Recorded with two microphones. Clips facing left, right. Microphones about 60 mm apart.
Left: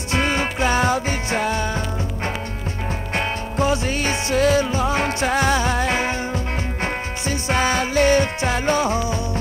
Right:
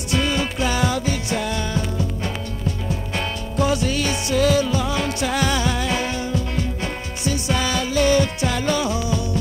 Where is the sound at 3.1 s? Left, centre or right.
Left.